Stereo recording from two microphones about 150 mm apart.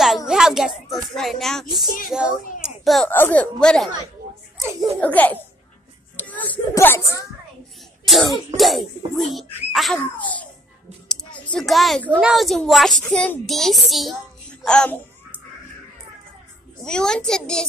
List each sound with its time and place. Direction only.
0.3 s a child's voice: 5° right (ahead or behind)
2.6 s a sound: centre (ahead or behind)
3.1 s speech: 10° left (ahead or behind)
5.0 s speech: 10° left (ahead or behind)
6.1 s a sound: 10° left (ahead or behind)
6.7 s speech: 15° left (ahead or behind)
8.1 s a child's voice: centre (ahead or behind)
11.1 s a sound: 5° left (ahead or behind)
12.2 s a child's voice: centre (ahead or behind)
16.8 s a child's voice: 5° left (ahead or behind)